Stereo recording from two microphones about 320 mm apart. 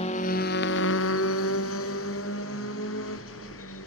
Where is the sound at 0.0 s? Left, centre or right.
Left.